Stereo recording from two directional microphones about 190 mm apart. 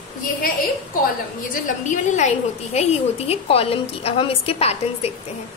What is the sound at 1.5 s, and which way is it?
A woman's voice, 40° left (ahead or behind).